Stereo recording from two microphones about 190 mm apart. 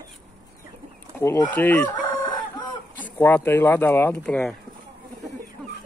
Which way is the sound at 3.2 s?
10° left (ahead or behind).